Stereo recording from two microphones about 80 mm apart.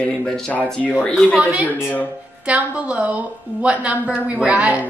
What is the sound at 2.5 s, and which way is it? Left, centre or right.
A woman's voice, centre.